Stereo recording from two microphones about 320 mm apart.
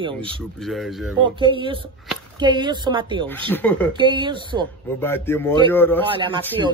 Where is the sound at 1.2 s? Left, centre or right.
Centre.